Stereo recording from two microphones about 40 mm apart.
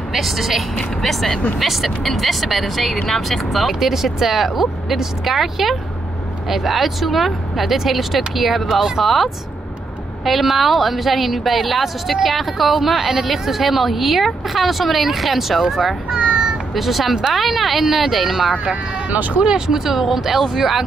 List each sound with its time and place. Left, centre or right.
0.1 s a woman's voice: centre
16.1 s a sound: right
16.7 s a woman's voice: centre
19.0 s speech: right
19.4 s a woman's voice: centre